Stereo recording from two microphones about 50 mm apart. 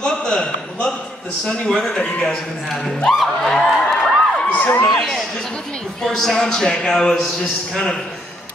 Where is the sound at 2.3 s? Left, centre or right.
Centre.